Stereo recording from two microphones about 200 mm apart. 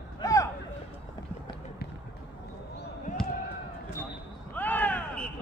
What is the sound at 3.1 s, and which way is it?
Basketball bounce, 35° left (ahead or behind).